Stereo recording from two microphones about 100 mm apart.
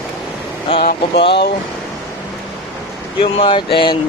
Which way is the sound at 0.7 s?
60° left (ahead or behind).